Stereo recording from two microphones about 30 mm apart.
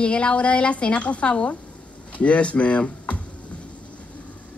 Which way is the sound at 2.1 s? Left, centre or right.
Left.